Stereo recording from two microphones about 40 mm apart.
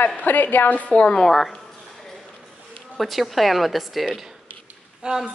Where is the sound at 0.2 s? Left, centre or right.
Left.